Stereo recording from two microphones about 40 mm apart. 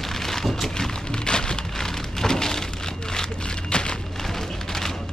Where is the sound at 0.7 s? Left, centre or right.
Centre.